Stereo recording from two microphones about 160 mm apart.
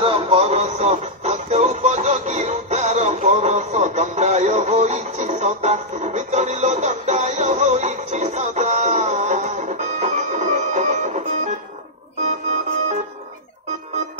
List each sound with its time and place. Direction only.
0.0 s music: 35° right (ahead or behind)